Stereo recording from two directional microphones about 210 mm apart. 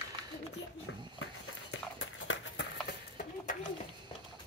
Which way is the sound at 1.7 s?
65° left (ahead or behind).